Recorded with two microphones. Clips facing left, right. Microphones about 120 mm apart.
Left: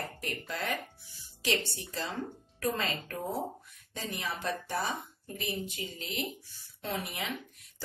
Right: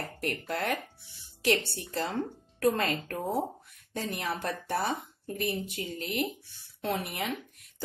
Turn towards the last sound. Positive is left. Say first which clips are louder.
# right 4 dB
turn(degrees=-55)  # may be behind; listen again after turning